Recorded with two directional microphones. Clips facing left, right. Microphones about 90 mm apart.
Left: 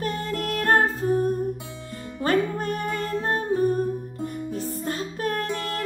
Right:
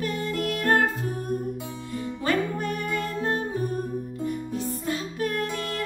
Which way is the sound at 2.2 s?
40° left (ahead or behind).